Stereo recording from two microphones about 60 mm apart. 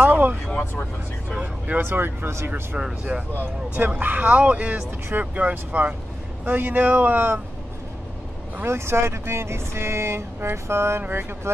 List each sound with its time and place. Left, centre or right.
0.0 s vehicle: right
1.4 s speech: right
1.9 s speech: right
2.8 s speech: centre
3.7 s speech: right
8.6 s speech: right